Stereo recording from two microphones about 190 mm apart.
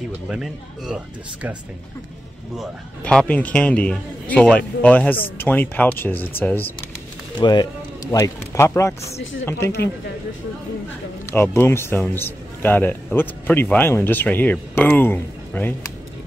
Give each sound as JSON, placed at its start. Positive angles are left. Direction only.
{"t": 0.3, "sound": "a man's voice", "side_deg": -5}
{"t": 7.3, "sound": "a man's voice", "side_deg": 25}
{"t": 11.2, "sound": "a man's voice", "side_deg": 10}